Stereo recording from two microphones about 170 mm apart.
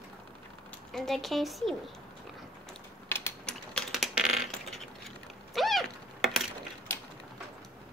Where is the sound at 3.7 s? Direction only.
Centre (ahead or behind).